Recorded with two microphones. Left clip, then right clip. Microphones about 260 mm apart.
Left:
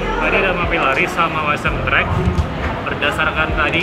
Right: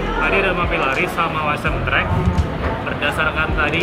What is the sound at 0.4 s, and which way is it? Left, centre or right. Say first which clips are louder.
Speech: left 2 dB; centre.